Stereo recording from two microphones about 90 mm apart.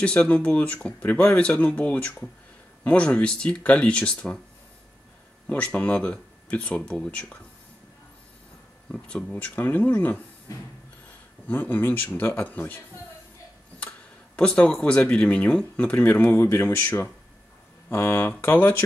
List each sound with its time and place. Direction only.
0.0 s speech: 10° left (ahead or behind)
5.5 s speech: 15° left (ahead or behind)
8.9 s speech: 10° left (ahead or behind)
10.5 s a sound: 40° left (ahead or behind)
11.4 s speech: 20° left (ahead or behind)